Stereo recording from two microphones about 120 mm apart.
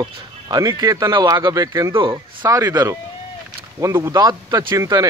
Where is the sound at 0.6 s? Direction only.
30° right (ahead or behind).